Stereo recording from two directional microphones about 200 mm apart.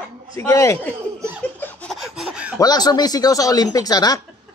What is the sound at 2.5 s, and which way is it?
Speech, 20° left (ahead or behind).